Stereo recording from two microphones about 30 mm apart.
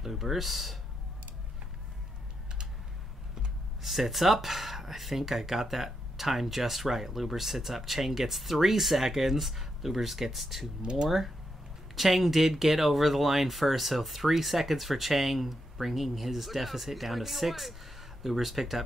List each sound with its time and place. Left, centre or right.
0.0 s speech: centre
3.8 s speech: centre
10.8 s speech: right
11.1 s speech: centre